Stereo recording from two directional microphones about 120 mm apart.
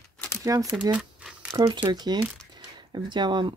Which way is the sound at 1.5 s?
40° right (ahead or behind).